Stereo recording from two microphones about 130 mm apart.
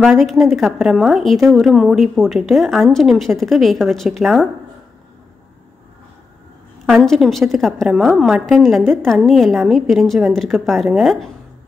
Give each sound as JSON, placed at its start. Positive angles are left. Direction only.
{"t": 0.2, "sound": "a woman's voice", "side_deg": 0}
{"t": 6.9, "sound": "a woman's voice", "side_deg": 0}